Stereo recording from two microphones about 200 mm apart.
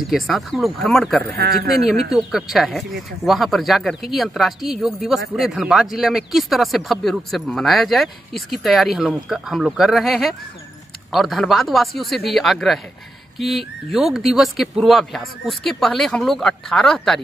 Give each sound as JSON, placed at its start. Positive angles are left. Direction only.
{"t": 0.1, "sound": "speech", "side_deg": 0}
{"t": 1.3, "sound": "a man's voice", "side_deg": -50}
{"t": 1.9, "sound": "speech", "side_deg": 0}